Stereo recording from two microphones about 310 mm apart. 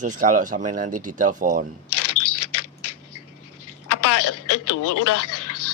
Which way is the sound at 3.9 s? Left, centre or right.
Left.